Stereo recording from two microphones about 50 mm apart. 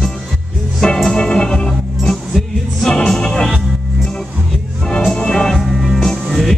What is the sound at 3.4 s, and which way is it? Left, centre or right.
Music, centre.